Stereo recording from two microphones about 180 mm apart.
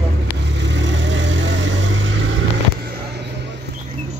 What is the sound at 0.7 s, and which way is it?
Vehicle, 90° right.